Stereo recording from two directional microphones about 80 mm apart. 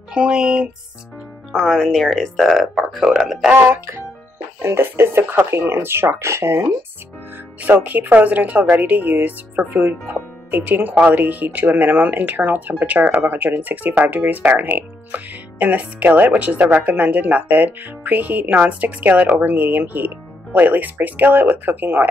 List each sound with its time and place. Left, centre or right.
0.1 s speech: centre
1.5 s speech: centre
3.5 s speech: right
7.6 s speech: right